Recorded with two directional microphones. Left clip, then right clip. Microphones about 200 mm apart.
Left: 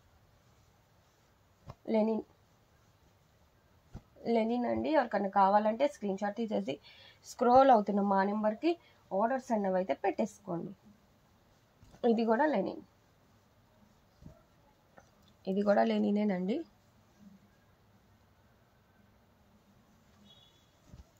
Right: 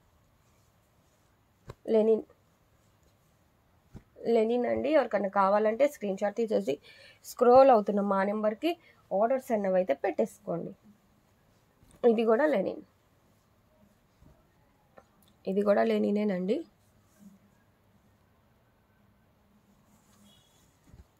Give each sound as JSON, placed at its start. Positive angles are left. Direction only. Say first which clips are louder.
{"t": 1.9, "sound": "a woman's voice", "louder": "right 7 dB", "side_deg": -45}
{"t": 4.2, "sound": "a woman's voice", "louder": "right 5 dB", "side_deg": -40}
{"t": 7.2, "sound": "a woman's voice", "louder": "right 4 dB", "side_deg": -35}
{"t": 12.0, "sound": "a woman's voice", "louder": "right 5 dB", "side_deg": -35}
{"t": 15.4, "sound": "speech", "louder": "right 3 dB", "side_deg": -35}